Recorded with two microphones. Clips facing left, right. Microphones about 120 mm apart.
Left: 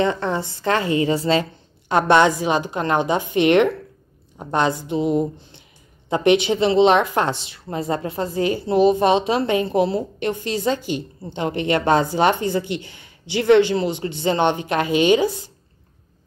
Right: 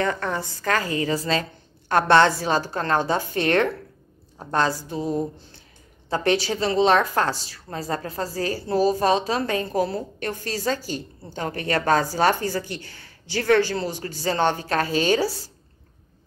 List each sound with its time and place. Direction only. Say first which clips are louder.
0.0 s speech: left 4 dB; 25° left (ahead or behind)